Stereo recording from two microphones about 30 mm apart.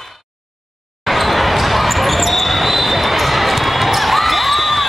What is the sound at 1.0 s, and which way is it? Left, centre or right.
Basketball bounce, centre.